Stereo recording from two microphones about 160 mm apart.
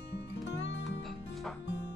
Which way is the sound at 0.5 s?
90° left.